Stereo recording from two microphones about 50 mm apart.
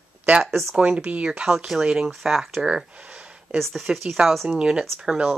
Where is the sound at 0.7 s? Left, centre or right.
Right.